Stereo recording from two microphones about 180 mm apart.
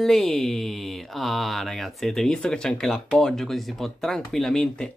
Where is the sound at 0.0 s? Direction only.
Centre (ahead or behind).